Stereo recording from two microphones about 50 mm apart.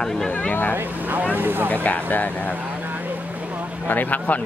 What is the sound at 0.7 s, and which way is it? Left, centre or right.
Speech, right.